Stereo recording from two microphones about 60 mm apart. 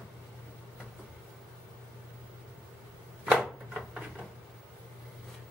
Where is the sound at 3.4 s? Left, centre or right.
Centre.